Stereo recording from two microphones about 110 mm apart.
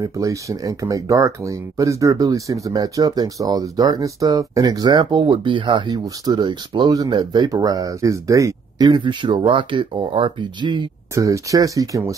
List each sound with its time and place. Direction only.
0.0 s speech: 30° right (ahead or behind); by 10.9 s 45° right (ahead or behind)
11.1 s speech: 30° right (ahead or behind)